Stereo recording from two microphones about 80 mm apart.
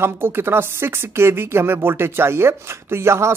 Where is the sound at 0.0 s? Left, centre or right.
Right.